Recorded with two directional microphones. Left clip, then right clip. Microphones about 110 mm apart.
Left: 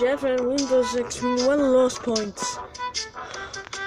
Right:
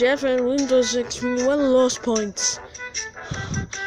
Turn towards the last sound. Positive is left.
turn(degrees=-25)  # may be behind; listen again after turning